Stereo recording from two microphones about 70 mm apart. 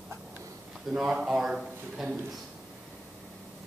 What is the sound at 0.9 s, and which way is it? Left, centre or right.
Speech, centre.